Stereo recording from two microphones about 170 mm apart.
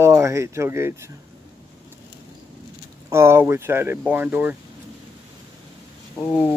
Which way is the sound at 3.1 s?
15° right (ahead or behind).